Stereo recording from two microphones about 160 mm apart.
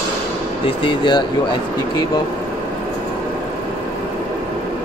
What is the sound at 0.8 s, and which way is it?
Speech, 30° left (ahead or behind).